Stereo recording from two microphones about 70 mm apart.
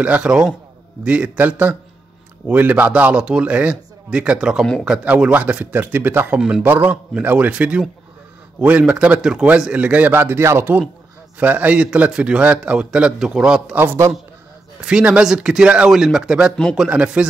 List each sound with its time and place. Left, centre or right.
0.0 s a man's voice: centre
5.1 s a man's voice: right
10.1 s speech: right
11.3 s a man's voice: right
14.8 s a man's voice: centre